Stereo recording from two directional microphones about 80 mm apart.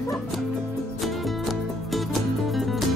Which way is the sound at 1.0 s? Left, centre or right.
Centre.